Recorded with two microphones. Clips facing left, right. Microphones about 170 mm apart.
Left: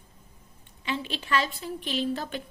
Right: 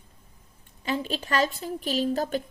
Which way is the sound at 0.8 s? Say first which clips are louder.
Right 3 dB; 40° right (ahead or behind).